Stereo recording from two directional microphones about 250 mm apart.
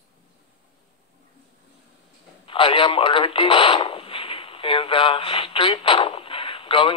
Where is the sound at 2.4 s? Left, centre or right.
Left.